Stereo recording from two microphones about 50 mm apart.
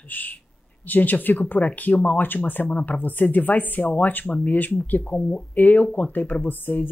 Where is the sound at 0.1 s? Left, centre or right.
Left.